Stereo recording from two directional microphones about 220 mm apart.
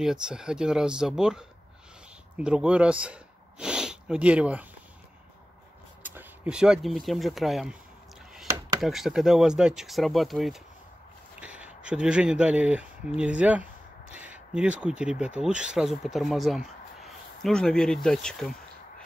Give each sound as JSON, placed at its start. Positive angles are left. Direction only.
{"t": 0.0, "sound": "speech", "side_deg": -5}
{"t": 6.0, "sound": "speech", "side_deg": -5}
{"t": 8.8, "sound": "speech", "side_deg": 0}